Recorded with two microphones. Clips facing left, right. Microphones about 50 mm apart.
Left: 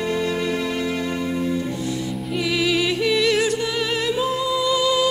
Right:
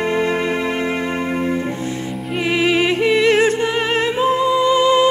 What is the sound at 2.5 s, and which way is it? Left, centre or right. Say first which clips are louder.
Music: right 5 dB; right.